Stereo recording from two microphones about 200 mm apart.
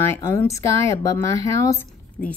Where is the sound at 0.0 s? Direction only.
10° left (ahead or behind).